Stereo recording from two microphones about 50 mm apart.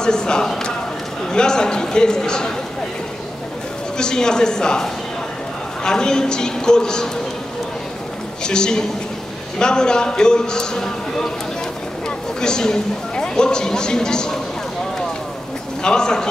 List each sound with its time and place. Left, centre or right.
0.0 s a man's voice: centre
4.0 s speech: centre
8.5 s speech: centre
12.4 s speech: centre
15.8 s speech: centre